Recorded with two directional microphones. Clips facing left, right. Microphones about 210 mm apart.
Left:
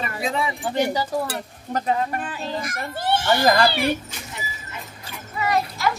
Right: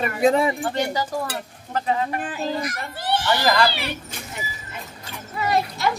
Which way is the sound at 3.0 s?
25° left (ahead or behind).